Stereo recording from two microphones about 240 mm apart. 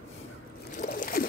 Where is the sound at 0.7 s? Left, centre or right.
Left.